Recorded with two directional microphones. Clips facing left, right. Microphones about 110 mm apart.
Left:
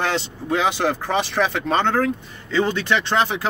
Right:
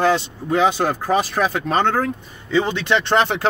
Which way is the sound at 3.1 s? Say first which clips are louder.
Right 3 dB; 60° right (ahead or behind).